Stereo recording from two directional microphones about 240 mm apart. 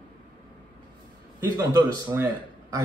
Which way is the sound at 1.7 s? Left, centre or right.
Centre.